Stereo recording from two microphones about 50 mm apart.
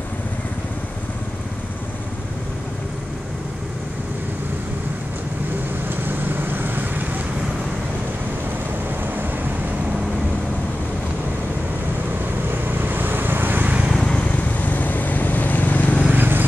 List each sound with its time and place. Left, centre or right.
5.9 s vehicle: right
12.7 s vehicle: right
13.9 s vehicle: left
16.1 s vehicle: right